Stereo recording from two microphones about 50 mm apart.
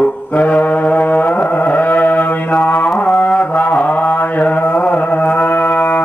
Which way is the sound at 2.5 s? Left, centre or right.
Left.